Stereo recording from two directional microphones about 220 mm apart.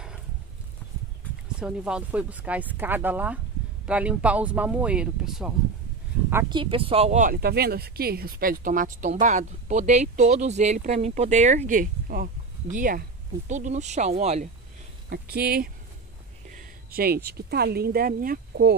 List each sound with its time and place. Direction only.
1.6 s speech: 5° right (ahead or behind)
6.5 s speech: 25° right (ahead or behind)
15.0 s speech: 45° right (ahead or behind)